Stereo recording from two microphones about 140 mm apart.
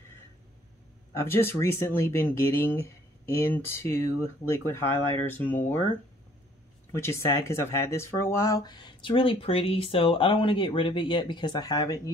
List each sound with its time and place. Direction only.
1.1 s speech: 15° left (ahead or behind)
7.0 s speech: 20° left (ahead or behind)